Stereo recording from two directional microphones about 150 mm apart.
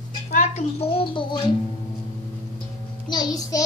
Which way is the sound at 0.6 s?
40° left (ahead or behind).